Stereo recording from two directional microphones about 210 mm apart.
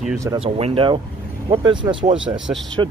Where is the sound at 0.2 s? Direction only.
25° right (ahead or behind).